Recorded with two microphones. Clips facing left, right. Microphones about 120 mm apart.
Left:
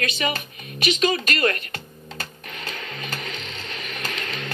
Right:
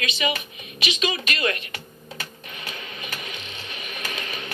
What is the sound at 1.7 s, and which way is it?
Computer keyboard, 50° left (ahead or behind).